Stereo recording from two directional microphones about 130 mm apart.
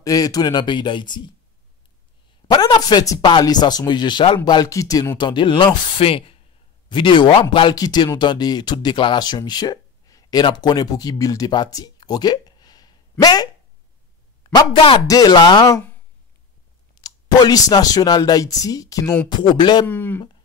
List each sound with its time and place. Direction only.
0.0 s speech: 30° left (ahead or behind)
2.4 s speech: 30° left (ahead or behind)
14.5 s speech: 35° left (ahead or behind)
16.9 s speech: 30° left (ahead or behind)
19.9 s speech: 15° left (ahead or behind)